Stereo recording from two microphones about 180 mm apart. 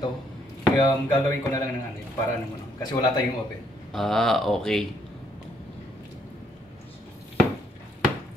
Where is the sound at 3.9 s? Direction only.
Centre (ahead or behind).